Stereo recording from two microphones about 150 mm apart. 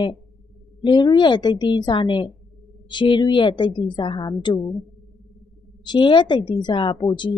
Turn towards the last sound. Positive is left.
turn(degrees=30)  # may be behind; listen again after turning